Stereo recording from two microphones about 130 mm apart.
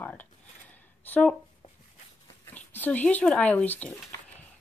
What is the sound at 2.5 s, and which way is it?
Speech, 15° left (ahead or behind).